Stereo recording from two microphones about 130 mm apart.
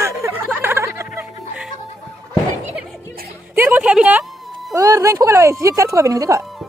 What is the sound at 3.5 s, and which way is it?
Speech, 10° right (ahead or behind).